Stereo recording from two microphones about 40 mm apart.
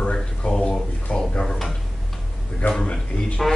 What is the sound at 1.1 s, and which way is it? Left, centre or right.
Drawer open or close, left.